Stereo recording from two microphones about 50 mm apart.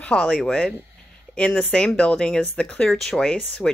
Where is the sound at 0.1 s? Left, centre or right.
Left.